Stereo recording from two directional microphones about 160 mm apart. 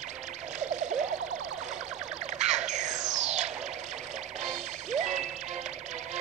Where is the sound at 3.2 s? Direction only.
45° right (ahead or behind).